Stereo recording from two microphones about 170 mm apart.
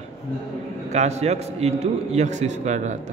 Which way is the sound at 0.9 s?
40° right (ahead or behind).